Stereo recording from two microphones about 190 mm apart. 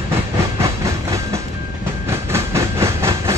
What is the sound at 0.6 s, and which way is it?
Train, 15° right (ahead or behind).